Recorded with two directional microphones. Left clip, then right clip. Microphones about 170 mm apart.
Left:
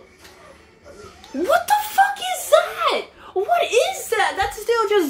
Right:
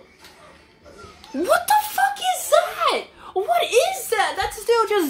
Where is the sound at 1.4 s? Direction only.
25° right (ahead or behind).